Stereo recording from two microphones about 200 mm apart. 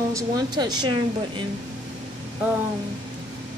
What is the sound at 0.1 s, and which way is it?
Speech, 20° right (ahead or behind).